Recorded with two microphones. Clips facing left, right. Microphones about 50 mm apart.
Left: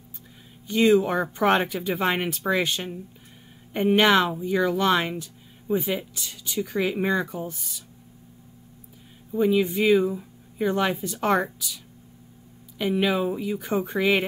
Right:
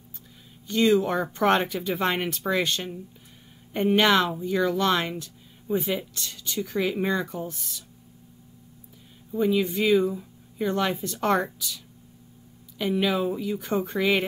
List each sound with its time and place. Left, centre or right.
0.7 s speech: centre
9.3 s speech: centre